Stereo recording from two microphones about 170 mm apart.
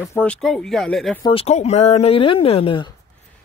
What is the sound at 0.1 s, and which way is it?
Speech, 10° left (ahead or behind).